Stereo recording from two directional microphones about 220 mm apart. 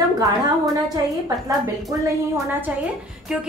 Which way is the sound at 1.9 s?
15° right (ahead or behind).